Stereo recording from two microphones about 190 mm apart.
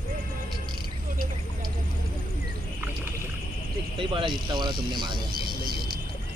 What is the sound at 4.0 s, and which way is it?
Speech, 25° right (ahead or behind).